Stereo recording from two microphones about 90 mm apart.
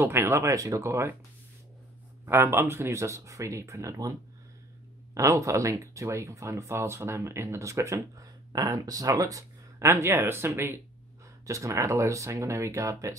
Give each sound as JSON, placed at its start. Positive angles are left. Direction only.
{"t": 0.0, "sound": "speech", "side_deg": -25}
{"t": 2.2, "sound": "speech", "side_deg": -25}
{"t": 5.1, "sound": "speech", "side_deg": -35}
{"t": 9.8, "sound": "speech", "side_deg": -25}